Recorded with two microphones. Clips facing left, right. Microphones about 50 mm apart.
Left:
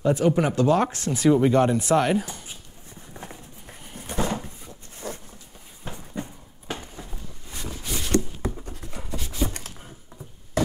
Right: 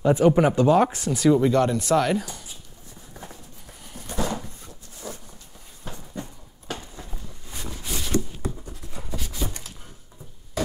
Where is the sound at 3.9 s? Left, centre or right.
Left.